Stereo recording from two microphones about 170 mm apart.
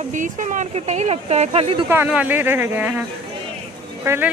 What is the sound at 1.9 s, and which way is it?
Speech, 10° right (ahead or behind).